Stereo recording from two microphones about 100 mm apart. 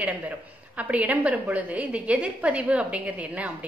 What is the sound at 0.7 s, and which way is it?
A woman's voice, 15° right (ahead or behind).